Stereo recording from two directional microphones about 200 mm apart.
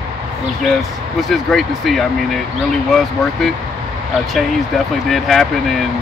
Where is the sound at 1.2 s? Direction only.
Centre (ahead or behind).